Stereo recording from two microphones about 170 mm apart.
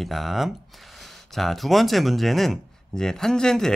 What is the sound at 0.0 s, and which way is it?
Speech, centre (ahead or behind).